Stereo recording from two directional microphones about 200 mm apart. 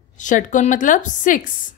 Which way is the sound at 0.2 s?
40° left (ahead or behind).